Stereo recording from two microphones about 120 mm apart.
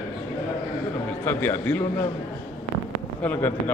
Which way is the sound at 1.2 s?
15° left (ahead or behind).